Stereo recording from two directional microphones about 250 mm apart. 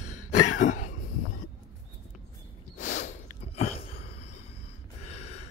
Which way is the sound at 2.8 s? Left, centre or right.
Left.